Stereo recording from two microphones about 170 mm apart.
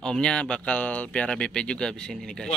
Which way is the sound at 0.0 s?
5° left (ahead or behind).